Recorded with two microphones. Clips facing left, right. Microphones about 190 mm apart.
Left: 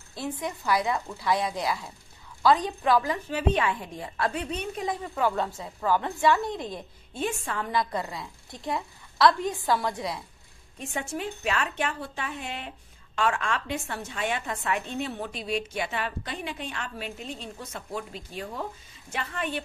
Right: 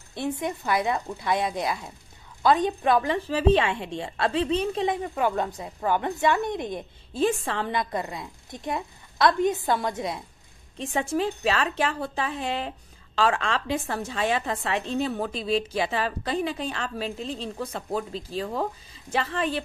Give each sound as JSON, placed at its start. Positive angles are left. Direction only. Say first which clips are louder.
{"t": 0.1, "sound": "a woman's voice", "louder": "right 4 dB", "side_deg": -25}
{"t": 10.8, "sound": "a woman's voice", "louder": "right 7 dB", "side_deg": -35}
{"t": 12.4, "sound": "speech", "louder": "right 7 dB", "side_deg": -90}
{"t": 12.6, "sound": "a woman's voice", "louder": "right 6 dB", "side_deg": -30}